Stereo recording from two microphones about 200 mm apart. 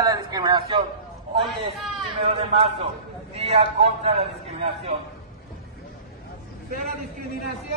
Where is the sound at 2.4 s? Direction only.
30° right (ahead or behind).